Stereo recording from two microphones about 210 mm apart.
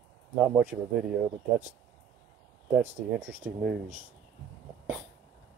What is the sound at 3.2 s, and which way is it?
Speech, 5° right (ahead or behind).